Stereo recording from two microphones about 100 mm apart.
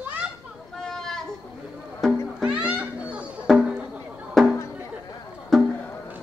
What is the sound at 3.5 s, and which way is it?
Music, 10° right (ahead or behind).